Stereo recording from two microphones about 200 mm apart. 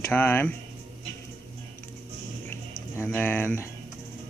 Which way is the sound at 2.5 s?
10° left (ahead or behind).